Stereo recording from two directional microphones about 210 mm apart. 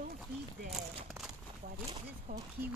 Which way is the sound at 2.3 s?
40° right (ahead or behind).